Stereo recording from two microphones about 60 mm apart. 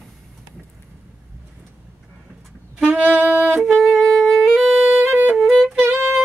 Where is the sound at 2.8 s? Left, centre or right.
Right.